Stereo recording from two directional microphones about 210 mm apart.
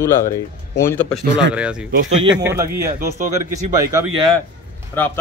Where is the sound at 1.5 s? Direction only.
5° right (ahead or behind).